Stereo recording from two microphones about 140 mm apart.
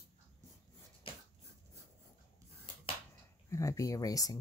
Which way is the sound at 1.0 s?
40° left (ahead or behind).